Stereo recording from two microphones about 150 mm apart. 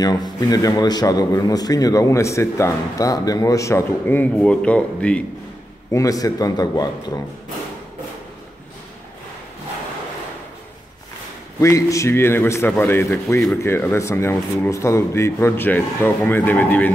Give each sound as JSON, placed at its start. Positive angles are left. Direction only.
{"t": 0.0, "sound": "a man's voice", "side_deg": 25}
{"t": 5.9, "sound": "a man's voice", "side_deg": 20}
{"t": 11.6, "sound": "speech", "side_deg": 20}